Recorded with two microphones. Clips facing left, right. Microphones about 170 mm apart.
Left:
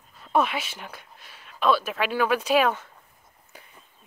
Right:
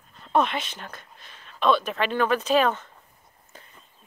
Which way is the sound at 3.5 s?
10° left (ahead or behind).